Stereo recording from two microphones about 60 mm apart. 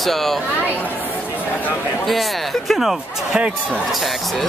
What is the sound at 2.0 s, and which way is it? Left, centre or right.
Speech, centre.